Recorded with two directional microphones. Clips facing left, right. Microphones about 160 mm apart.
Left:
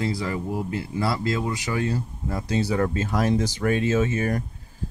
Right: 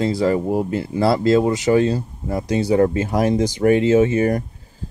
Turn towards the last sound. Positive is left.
turn(degrees=-25)  # may be behind; listen again after turning